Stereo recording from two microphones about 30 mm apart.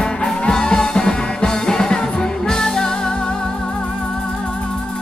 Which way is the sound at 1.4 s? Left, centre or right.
Centre.